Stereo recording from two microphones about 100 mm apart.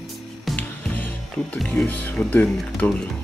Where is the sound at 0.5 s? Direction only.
15° left (ahead or behind).